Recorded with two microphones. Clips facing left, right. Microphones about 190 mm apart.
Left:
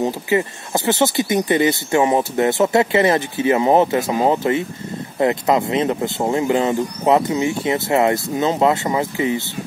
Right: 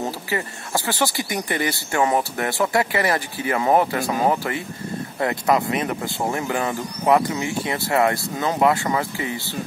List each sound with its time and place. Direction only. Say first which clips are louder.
0.0 s speech: left 7 dB; 20° left (ahead or behind)